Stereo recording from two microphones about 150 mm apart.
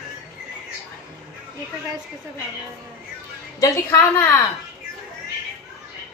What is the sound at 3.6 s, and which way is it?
Speech, 20° left (ahead or behind).